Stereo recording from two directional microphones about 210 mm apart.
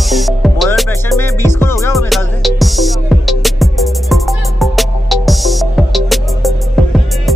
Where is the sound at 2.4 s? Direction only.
Centre (ahead or behind).